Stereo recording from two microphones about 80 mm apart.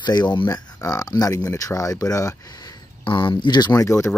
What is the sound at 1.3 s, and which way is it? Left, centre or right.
Speech, left.